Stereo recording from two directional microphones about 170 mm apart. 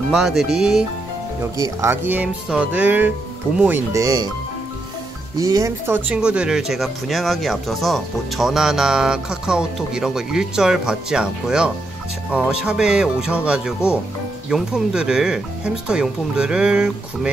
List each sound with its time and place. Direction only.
0.1 s speech: centre (ahead or behind)
1.6 s speech: 15° right (ahead or behind)
5.4 s speech: 20° right (ahead or behind)